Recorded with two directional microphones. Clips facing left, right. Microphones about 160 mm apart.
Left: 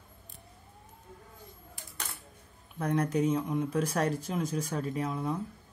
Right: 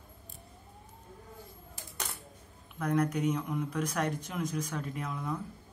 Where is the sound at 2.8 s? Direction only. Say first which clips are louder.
Left 1 dB; 30° left (ahead or behind).